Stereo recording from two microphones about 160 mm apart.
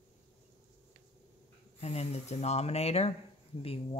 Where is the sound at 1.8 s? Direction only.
40° left (ahead or behind).